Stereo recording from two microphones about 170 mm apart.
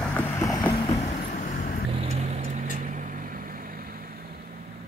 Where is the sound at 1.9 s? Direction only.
40° right (ahead or behind).